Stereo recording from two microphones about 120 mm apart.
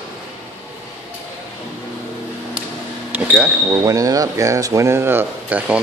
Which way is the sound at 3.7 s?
30° right (ahead or behind).